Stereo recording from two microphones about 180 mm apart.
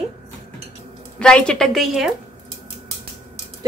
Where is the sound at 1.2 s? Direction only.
5° left (ahead or behind).